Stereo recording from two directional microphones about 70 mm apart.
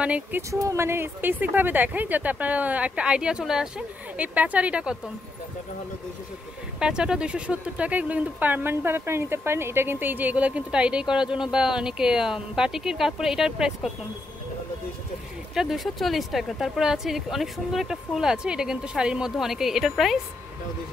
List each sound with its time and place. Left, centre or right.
0.0 s speech: centre
0.4 s speech: right
0.8 s speech: right; by 3.8 s centre
4.2 s speech: right
6.8 s speech: centre
15.5 s speech: centre